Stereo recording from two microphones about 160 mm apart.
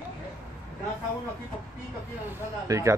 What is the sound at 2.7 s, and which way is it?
Speech, 20° right (ahead or behind).